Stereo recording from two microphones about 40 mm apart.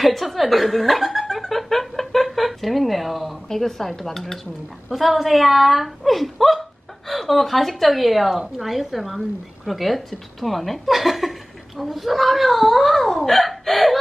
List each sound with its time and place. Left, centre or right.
0.0 s snicker: centre
3.4 s speech: centre
4.9 s a woman's voice: centre